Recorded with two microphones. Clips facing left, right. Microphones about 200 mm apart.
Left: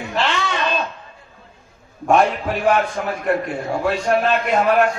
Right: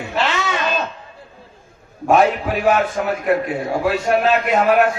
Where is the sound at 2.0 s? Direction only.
5° right (ahead or behind).